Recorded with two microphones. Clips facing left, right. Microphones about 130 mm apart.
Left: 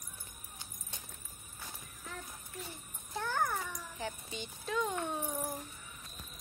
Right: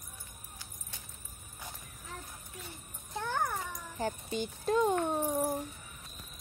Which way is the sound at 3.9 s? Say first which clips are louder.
Right 9 dB; 45° right (ahead or behind).